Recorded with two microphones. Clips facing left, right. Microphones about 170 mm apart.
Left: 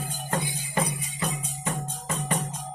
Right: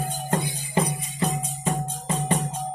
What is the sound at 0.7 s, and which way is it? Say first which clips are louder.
Music: right 4 dB; 25° right (ahead or behind).